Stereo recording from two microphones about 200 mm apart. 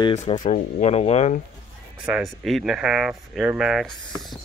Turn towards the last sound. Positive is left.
turn(degrees=0)  # may be behind; listen again after turning